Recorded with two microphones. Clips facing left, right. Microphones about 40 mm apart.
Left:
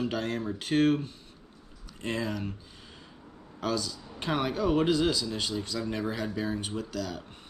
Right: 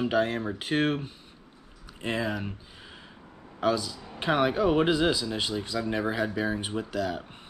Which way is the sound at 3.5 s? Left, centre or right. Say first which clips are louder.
Right 5 dB; centre.